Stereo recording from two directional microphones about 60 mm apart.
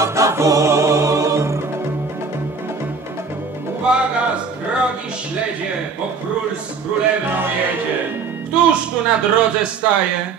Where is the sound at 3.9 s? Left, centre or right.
Centre.